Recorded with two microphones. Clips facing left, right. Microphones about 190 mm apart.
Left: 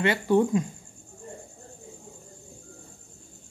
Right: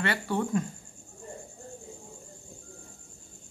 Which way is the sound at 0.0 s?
20° left (ahead or behind).